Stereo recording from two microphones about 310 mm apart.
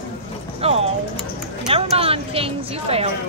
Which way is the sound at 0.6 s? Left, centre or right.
Centre.